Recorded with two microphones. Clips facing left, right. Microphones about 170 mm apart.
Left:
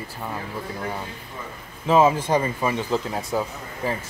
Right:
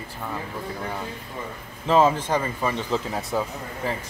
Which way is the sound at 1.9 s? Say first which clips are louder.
Left 2 dB; 10° left (ahead or behind).